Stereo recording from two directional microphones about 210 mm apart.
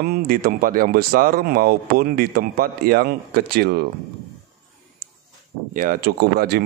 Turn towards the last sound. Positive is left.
turn(degrees=-45)  # may be behind; listen again after turning